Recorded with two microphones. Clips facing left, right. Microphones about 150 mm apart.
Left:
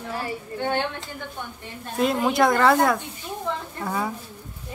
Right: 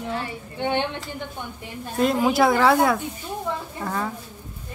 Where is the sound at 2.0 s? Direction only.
Centre (ahead or behind).